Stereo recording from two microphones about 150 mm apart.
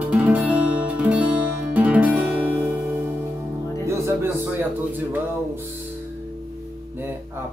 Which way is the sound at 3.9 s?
20° right (ahead or behind).